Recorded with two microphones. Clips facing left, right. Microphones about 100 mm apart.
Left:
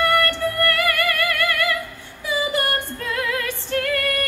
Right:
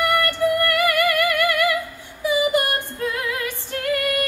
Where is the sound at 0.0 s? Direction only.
15° right (ahead or behind).